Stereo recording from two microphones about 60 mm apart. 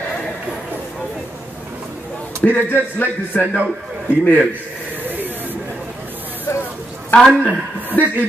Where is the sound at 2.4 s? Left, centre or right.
Left.